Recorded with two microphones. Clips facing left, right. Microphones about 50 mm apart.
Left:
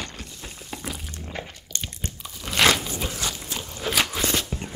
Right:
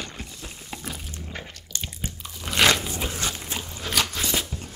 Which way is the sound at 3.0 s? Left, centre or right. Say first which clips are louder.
Even; centre.